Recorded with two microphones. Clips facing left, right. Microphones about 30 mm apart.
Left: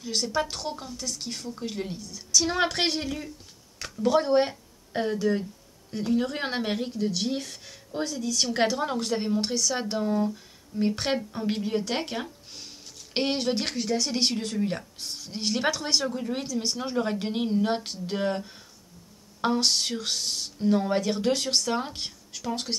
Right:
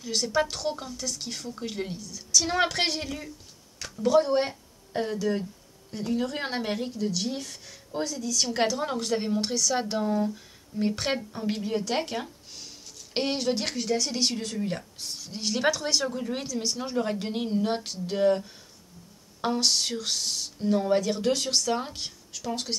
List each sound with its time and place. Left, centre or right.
0.0 s speech: centre
0.7 s a woman's voice: centre
0.9 s speech: centre
2.0 s speech: centre
2.4 s speech: centre
5.3 s music: centre
5.9 s speech: centre
8.7 s speech: centre
11.1 s speech: centre
14.6 s speech: centre
16.1 s speech: centre
16.9 s speech: centre